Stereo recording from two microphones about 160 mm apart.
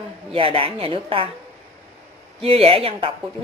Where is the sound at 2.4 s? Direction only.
35° right (ahead or behind).